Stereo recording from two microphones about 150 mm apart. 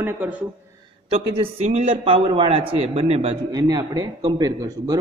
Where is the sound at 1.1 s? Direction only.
40° right (ahead or behind).